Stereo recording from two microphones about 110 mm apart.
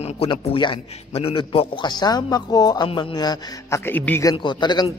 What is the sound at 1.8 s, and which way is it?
A man's voice, 40° left (ahead or behind).